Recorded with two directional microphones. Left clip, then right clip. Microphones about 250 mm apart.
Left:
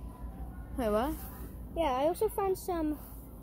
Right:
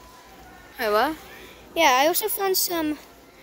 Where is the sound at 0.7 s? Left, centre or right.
Right.